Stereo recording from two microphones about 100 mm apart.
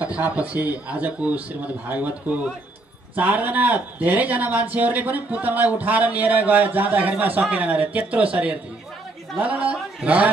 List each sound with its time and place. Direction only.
0.0 s a man's voice: 15° right (ahead or behind)